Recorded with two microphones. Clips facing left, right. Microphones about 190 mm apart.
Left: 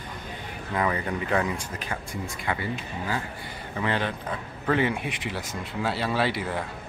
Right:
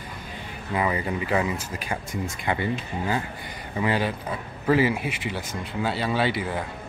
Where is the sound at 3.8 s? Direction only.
10° right (ahead or behind).